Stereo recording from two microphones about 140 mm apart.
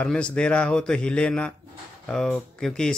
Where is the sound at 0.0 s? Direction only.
10° left (ahead or behind).